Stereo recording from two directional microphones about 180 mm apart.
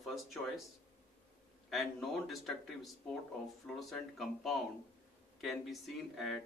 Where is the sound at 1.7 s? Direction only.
Centre (ahead or behind).